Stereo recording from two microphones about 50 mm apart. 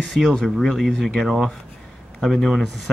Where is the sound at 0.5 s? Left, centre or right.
Centre.